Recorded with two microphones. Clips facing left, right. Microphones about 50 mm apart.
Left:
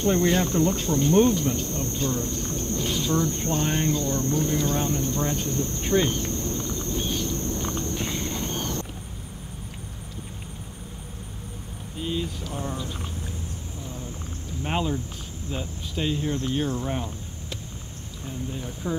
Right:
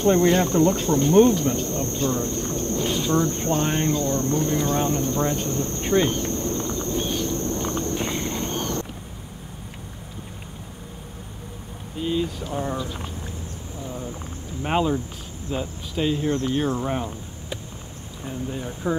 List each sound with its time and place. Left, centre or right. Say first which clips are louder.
0.0 s insect: right 4 dB; centre
12.0 s a sound: right 5 dB; centre
12.4 s speech: right 5 dB; centre
12.7 s speech: right 3 dB; centre
14.6 s speech: right 5 dB; centre